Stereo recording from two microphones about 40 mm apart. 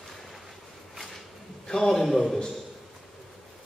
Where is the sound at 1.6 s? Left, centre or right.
Centre.